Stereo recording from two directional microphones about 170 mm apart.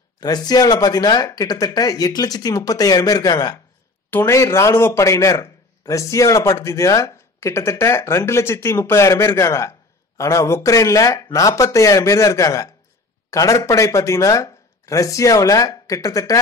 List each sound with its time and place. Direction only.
0.2 s speech: 25° left (ahead or behind)